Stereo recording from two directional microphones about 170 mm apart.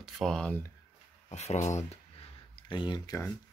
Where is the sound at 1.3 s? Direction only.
40° left (ahead or behind).